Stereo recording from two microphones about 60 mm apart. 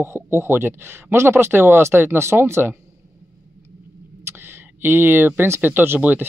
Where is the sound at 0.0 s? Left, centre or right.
Right.